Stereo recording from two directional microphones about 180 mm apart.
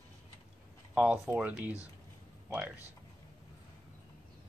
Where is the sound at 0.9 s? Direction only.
5° right (ahead or behind).